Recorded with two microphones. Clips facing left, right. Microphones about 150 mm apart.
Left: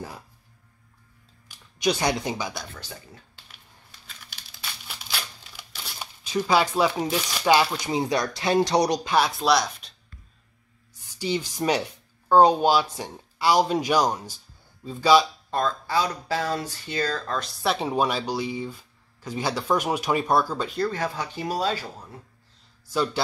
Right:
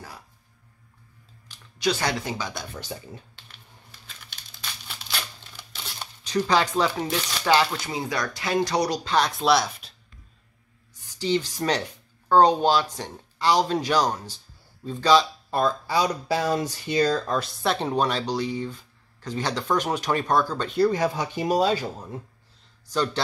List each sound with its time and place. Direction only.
1.5 s speech: 15° left (ahead or behind)
3.3 s a sound: 5° left (ahead or behind)
4.3 s crumpling: 5° left (ahead or behind)
7.8 s speech: 20° left (ahead or behind)
9.1 s speech: 5° left (ahead or behind)
11.1 s speech: 10° left (ahead or behind)
15.5 s speech: 10° right (ahead or behind)
17.4 s speech: 5° left (ahead or behind)
20.7 s speech: 15° right (ahead or behind)